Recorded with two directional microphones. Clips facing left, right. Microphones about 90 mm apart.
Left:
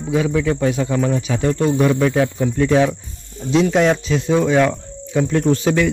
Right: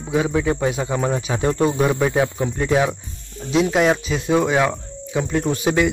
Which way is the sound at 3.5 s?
5° right (ahead or behind).